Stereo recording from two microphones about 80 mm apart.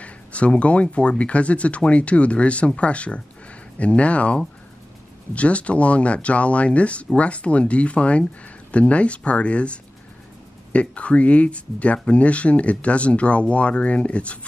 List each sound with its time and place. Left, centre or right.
0.0 s speech: centre